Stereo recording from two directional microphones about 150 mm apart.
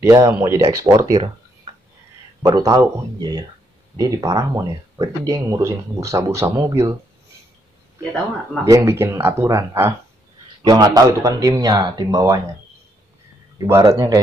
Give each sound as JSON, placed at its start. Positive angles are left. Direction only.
{"t": 0.0, "sound": "speech", "side_deg": -20}
{"t": 2.4, "sound": "speech", "side_deg": -20}
{"t": 8.6, "sound": "speech", "side_deg": -20}
{"t": 10.6, "sound": "speech", "side_deg": -25}
{"t": 13.6, "sound": "speech", "side_deg": -20}